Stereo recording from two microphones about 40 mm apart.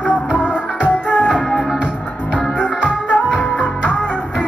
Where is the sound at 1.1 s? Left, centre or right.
Left.